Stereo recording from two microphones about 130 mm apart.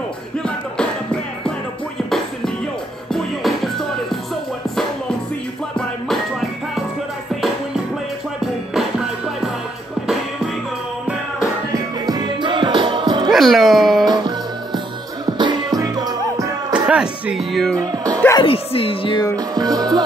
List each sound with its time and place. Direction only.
2.0 s music: 5° left (ahead or behind)
5.8 s music: centre (ahead or behind)
8.4 s music: 5° right (ahead or behind)
11.7 s music: 35° right (ahead or behind)
13.3 s music: centre (ahead or behind)
14.0 s music: 35° right (ahead or behind)
16.7 s music: 5° right (ahead or behind)
17.7 s music: 30° right (ahead or behind)
18.4 s music: 45° left (ahead or behind)
19.3 s music: 30° right (ahead or behind)